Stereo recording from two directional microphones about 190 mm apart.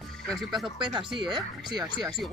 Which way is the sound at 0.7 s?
25° right (ahead or behind).